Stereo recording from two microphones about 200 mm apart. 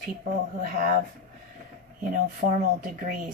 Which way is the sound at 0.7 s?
40° right (ahead or behind).